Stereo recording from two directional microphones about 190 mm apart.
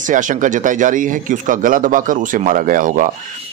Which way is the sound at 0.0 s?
45° right (ahead or behind).